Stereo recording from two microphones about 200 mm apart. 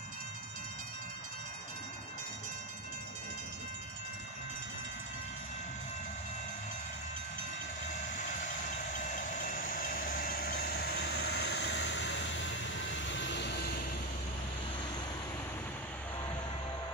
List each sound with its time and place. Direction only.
8.0 s train: 40° left (ahead or behind)